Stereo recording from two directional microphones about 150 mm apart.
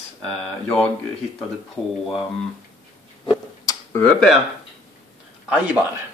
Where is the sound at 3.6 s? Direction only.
25° left (ahead or behind).